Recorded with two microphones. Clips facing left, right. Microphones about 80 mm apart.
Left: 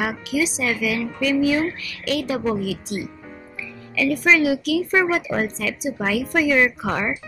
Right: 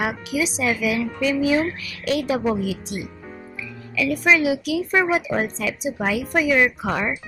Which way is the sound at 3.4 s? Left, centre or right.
Centre.